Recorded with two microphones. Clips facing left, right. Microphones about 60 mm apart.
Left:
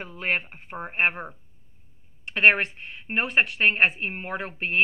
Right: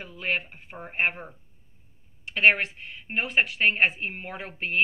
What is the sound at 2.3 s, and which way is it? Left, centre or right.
Speech, left.